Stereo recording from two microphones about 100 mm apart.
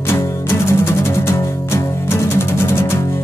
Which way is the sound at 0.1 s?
25° left (ahead or behind).